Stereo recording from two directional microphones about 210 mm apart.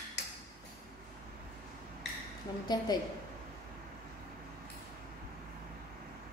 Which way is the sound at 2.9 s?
20° left (ahead or behind).